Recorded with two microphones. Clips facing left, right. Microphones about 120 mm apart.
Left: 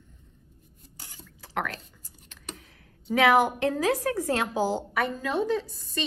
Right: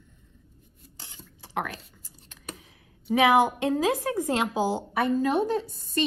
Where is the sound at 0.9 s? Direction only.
25° right (ahead or behind).